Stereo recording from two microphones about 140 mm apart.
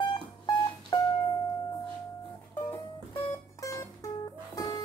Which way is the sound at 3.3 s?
20° left (ahead or behind).